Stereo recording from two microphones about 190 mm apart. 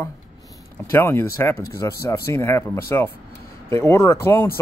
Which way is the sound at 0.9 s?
10° left (ahead or behind).